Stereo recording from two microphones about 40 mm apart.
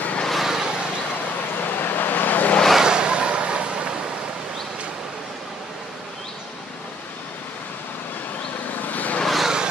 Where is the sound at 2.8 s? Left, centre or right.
Right.